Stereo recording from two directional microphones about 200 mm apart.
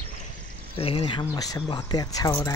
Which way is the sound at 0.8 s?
30° left (ahead or behind).